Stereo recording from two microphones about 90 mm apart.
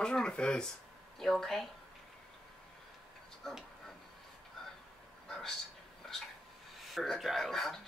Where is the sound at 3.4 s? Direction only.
Centre (ahead or behind).